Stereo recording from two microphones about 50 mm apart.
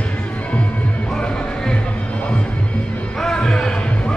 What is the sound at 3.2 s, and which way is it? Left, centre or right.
Basketball bounce, centre.